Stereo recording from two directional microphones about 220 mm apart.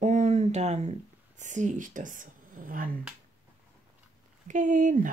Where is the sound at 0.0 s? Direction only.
35° right (ahead or behind).